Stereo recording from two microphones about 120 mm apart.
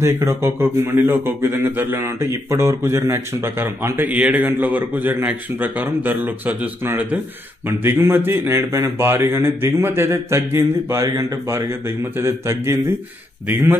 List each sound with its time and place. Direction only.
0.0 s a man's voice: 25° right (ahead or behind)